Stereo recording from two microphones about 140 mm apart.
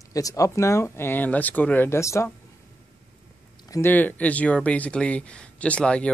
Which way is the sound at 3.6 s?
25° left (ahead or behind).